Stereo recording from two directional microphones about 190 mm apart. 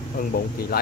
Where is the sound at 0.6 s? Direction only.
55° left (ahead or behind).